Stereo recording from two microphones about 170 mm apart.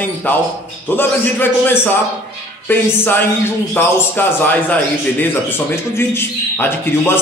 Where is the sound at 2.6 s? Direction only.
10° left (ahead or behind).